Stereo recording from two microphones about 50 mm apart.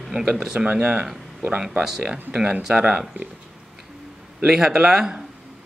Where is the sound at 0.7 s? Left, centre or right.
Right.